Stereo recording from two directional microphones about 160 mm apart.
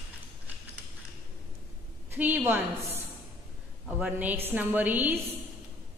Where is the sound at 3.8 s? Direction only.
10° right (ahead or behind).